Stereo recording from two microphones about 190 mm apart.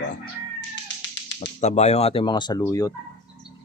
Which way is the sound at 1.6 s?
35° left (ahead or behind).